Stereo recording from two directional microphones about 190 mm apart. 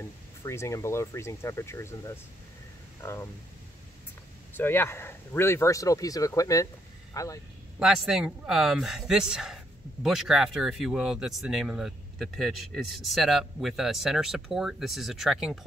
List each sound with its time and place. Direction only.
0.0 s speech: 15° left (ahead or behind)
4.6 s speech: 10° left (ahead or behind)
7.8 s speech: 5° right (ahead or behind)